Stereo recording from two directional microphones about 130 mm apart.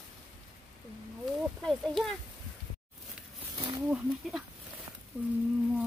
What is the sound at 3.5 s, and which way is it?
Wild animals, 35° right (ahead or behind).